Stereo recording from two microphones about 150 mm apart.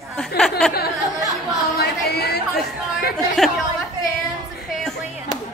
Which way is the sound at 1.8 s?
90° left.